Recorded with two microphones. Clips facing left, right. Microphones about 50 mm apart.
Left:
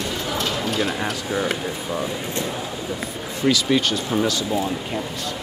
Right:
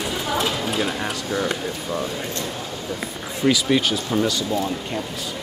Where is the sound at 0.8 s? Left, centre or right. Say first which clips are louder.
Left 1 dB; centre.